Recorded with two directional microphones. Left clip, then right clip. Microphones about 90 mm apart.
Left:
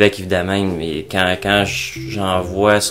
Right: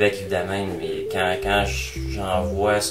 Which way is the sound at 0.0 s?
40° left (ahead or behind).